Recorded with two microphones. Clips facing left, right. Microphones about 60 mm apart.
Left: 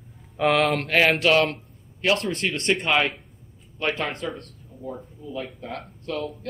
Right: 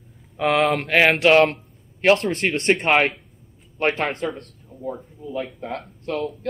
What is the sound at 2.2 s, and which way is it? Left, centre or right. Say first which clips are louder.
Speech: right 4 dB; right.